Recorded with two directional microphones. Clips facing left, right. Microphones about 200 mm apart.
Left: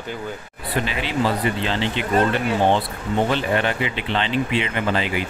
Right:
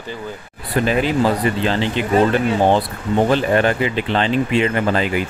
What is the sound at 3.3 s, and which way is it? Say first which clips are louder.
Speech: right 5 dB; 40° right (ahead or behind).